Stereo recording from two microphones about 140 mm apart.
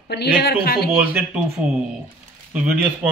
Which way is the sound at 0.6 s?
90° left.